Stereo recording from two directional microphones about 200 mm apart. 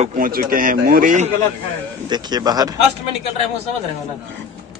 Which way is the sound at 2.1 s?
20° right (ahead or behind).